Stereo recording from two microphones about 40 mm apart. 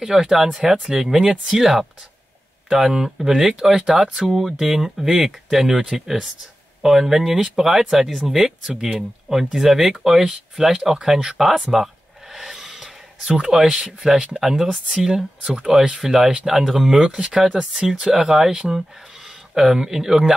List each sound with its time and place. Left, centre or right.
0.0 s speech: centre
11.6 s a sound: centre
13.4 s speech: centre